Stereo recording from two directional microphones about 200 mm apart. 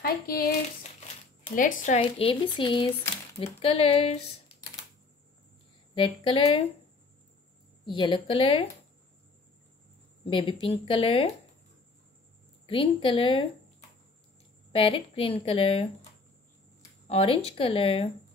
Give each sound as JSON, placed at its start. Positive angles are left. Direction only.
{"t": 0.0, "sound": "a sound", "side_deg": 50}
{"t": 1.5, "sound": "a woman's voice", "side_deg": 40}
{"t": 2.0, "sound": "speech", "side_deg": 25}
{"t": 5.9, "sound": "speech", "side_deg": 25}
{"t": 7.8, "sound": "speech", "side_deg": 25}
{"t": 10.3, "sound": "speech", "side_deg": 25}
{"t": 12.6, "sound": "speech", "side_deg": 25}
{"t": 14.7, "sound": "speech", "side_deg": 25}
{"t": 17.1, "sound": "speech", "side_deg": 30}